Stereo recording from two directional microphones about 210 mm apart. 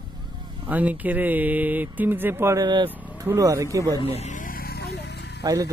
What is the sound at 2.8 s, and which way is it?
Speech, 10° right (ahead or behind).